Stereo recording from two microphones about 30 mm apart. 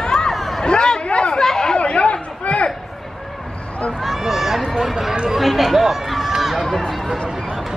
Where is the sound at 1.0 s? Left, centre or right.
Left.